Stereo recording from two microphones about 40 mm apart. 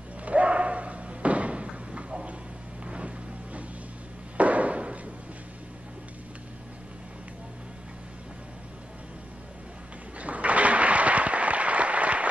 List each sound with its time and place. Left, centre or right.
0.2 s slam: right
2.8 s music: right
4.4 s a sound: right
10.1 s applause: right